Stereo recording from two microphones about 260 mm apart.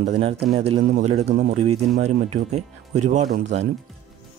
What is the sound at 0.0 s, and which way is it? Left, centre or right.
Speech, right.